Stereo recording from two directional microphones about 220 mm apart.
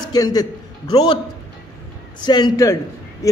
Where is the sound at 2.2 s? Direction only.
20° left (ahead or behind).